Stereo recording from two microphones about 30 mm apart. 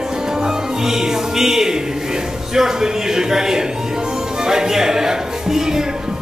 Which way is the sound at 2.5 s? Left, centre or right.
Centre.